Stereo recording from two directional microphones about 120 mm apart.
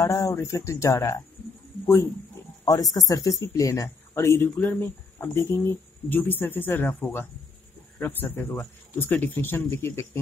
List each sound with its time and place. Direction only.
0.0 s speech: 30° left (ahead or behind)
2.6 s speech: 30° left (ahead or behind)